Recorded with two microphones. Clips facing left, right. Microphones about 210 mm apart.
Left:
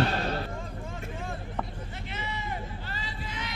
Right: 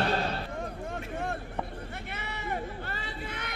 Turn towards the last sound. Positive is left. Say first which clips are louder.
# even
turn(degrees=-60)  # may be behind; listen again after turning